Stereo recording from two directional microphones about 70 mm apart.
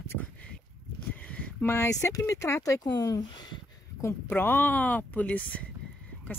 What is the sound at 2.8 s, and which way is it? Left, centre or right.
Speech, left.